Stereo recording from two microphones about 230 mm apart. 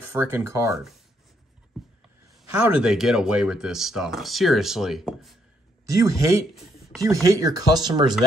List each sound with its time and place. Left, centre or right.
0.1 s speech: centre
1.8 s a sound: centre
2.5 s speech: centre
5.9 s speech: centre